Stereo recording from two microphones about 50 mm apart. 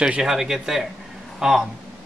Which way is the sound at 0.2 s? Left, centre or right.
Centre.